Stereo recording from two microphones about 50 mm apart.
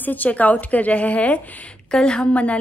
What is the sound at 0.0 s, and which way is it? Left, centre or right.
A woman's voice, left.